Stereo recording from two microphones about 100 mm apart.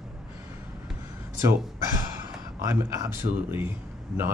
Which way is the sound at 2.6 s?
25° right (ahead or behind).